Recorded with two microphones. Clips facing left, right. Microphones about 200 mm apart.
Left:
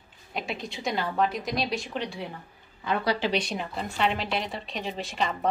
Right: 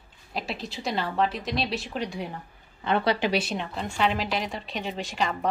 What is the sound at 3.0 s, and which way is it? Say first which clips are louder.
Speech: right 1 dB; 20° right (ahead or behind).